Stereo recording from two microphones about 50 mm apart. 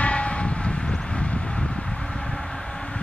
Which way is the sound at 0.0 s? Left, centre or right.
Left.